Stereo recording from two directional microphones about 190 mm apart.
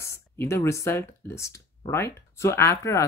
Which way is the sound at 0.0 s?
15° left (ahead or behind).